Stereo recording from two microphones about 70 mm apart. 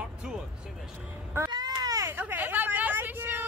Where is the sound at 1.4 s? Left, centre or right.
Right.